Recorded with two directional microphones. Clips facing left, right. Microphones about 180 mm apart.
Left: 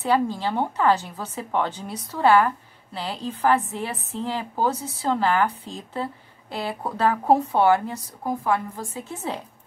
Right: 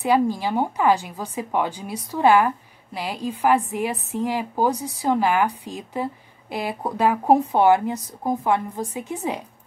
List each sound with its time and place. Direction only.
0.0 s a woman's voice: 15° right (ahead or behind)